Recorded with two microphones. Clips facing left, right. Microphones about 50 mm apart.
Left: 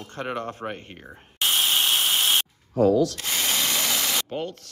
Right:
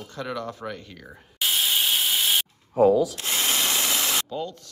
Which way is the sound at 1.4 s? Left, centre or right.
Centre.